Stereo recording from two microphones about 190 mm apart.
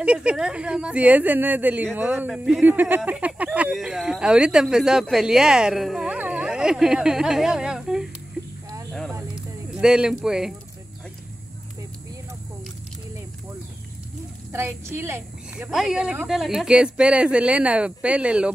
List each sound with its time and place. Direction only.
0.0 s speech: 5° right (ahead or behind)
9.3 s a sound: 5° right (ahead or behind)
14.5 s speech: 15° right (ahead or behind)